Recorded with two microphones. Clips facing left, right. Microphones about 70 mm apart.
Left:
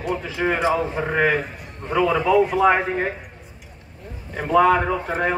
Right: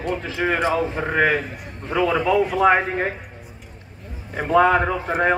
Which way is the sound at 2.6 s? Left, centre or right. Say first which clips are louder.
Right 1 dB; centre.